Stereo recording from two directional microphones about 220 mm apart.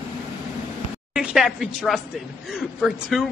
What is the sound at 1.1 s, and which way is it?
Speech, centre (ahead or behind).